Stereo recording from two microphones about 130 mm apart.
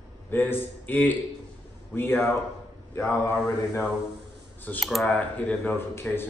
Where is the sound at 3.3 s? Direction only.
20° left (ahead or behind).